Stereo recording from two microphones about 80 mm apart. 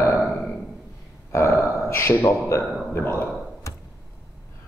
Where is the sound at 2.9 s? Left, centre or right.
Left.